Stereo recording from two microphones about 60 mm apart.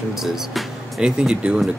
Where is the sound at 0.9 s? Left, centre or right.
Centre.